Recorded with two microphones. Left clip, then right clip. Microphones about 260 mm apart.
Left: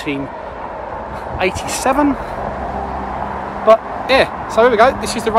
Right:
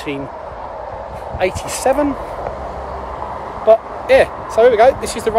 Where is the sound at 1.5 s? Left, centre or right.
Left.